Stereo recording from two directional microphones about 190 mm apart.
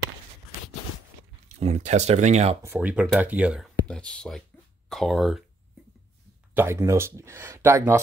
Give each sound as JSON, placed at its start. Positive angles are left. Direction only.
{"t": 1.6, "sound": "speech", "side_deg": -35}
{"t": 2.6, "sound": "speech", "side_deg": -10}
{"t": 6.5, "sound": "speech", "side_deg": -10}